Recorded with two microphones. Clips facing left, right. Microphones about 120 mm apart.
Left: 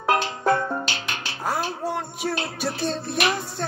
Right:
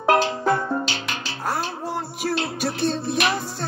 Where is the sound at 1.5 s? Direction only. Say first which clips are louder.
Left 1 dB; centre (ahead or behind).